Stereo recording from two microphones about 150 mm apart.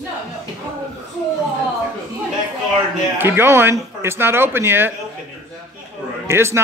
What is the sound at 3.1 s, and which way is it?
Speech, 15° right (ahead or behind).